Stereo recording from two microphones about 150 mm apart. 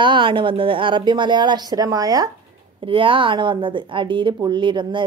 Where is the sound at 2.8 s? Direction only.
35° right (ahead or behind).